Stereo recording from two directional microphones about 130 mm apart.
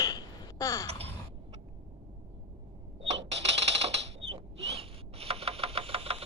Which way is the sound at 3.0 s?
55° right (ahead or behind).